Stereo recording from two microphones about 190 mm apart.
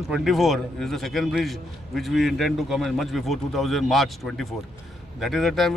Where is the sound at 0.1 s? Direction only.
Centre (ahead or behind).